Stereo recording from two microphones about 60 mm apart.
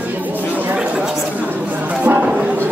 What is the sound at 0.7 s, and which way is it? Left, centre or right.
Chatter, centre.